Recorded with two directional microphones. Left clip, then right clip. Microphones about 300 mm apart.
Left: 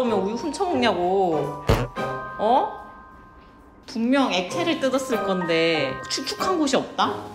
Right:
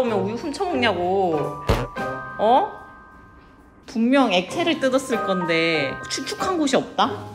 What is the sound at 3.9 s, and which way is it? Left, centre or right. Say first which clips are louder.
Speech: right 3 dB; centre.